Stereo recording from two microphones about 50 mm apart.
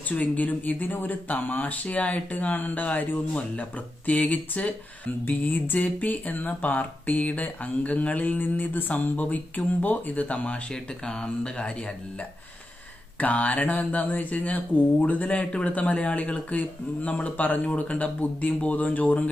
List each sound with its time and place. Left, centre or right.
0.1 s speech: left
8.4 s speech: left
10.7 s speech: centre
13.2 s speech: left